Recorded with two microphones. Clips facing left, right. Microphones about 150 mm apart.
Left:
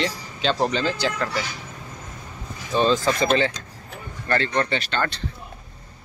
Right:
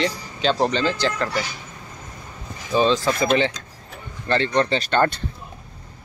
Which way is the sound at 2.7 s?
Centre (ahead or behind).